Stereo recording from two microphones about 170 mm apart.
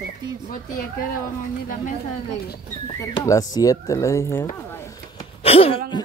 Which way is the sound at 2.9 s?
20° left (ahead or behind).